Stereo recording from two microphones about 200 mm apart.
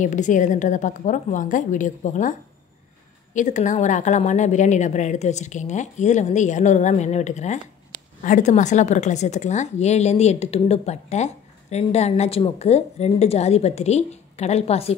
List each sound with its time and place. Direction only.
0.0 s a woman's voice: 40° left (ahead or behind)
3.3 s a woman's voice: 40° left (ahead or behind)